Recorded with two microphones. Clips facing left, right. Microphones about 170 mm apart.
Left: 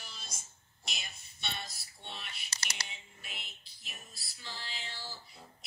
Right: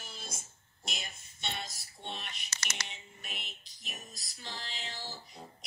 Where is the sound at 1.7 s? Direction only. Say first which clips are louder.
Right 5 dB; 45° right (ahead or behind).